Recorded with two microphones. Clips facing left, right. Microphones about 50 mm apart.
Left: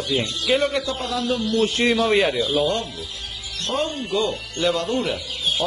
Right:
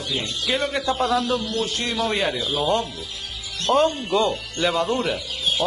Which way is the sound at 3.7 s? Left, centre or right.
Right.